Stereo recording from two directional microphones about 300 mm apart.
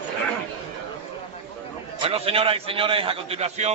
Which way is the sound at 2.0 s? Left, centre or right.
Centre.